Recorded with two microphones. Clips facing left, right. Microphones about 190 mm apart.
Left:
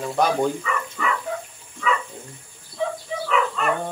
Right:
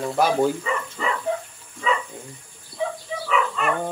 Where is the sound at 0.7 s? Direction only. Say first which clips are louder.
Even; 30° right (ahead or behind).